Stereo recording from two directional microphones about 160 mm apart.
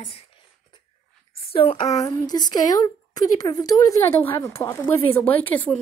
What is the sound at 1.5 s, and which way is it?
Speech, 35° left (ahead or behind).